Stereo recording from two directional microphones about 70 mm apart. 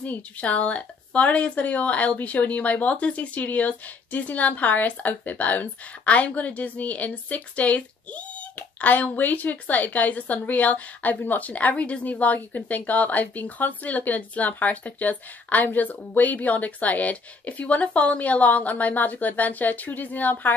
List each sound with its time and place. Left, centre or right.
0.0 s a woman's voice: centre